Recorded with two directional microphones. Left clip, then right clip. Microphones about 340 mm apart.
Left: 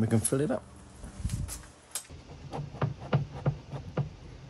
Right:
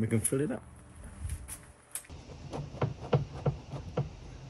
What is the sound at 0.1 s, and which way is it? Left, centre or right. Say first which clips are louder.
Speech: left 3 dB; centre.